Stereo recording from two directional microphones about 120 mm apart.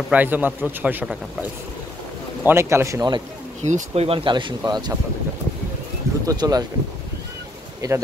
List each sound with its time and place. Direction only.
0.1 s speech: 15° right (ahead or behind)
2.4 s speech: 20° right (ahead or behind)
3.6 s speech: 65° right (ahead or behind); by 4.9 s 35° right (ahead or behind)
6.2 s speech: 30° right (ahead or behind)
7.8 s speech: 30° right (ahead or behind)